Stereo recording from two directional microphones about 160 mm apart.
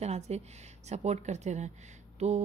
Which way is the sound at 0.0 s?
40° right (ahead or behind).